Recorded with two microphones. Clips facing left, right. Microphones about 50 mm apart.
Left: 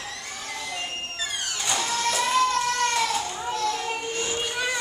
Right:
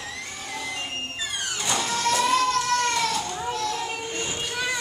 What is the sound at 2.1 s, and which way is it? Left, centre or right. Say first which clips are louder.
Music: right 1 dB; centre.